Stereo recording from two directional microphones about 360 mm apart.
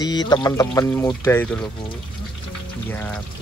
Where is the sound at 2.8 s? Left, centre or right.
Centre.